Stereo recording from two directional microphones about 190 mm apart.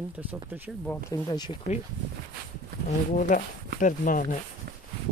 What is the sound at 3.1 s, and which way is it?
Speech, 45° left (ahead or behind).